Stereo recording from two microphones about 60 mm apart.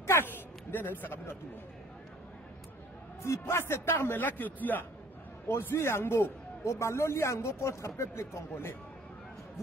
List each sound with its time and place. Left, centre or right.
0.2 s speech: left
3.2 s a man's voice: left
4.2 s a man's voice: left
5.5 s a man's voice: left